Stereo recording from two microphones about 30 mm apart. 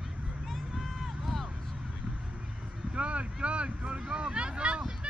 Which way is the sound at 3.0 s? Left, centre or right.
Right.